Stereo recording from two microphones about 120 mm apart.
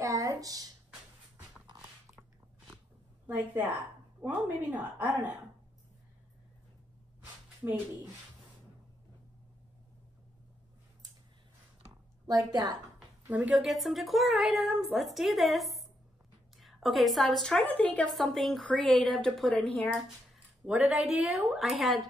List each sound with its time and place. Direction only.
0.0 s a sound: 30° right (ahead or behind)
3.3 s a woman's voice: 15° right (ahead or behind)
12.3 s a woman's voice: 30° right (ahead or behind)
13.3 s a woman's voice: 10° right (ahead or behind)
13.7 s a woman's voice: centre (ahead or behind)
18.1 s a woman's voice: centre (ahead or behind)
20.6 s a woman's voice: 5° right (ahead or behind)